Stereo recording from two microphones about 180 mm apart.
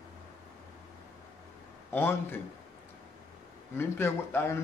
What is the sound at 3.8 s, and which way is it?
Speech, 10° left (ahead or behind).